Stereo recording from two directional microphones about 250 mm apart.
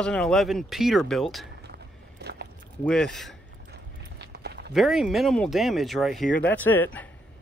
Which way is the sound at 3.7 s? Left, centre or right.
Right.